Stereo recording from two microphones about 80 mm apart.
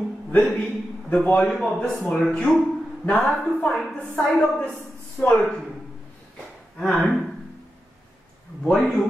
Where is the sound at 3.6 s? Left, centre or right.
Centre.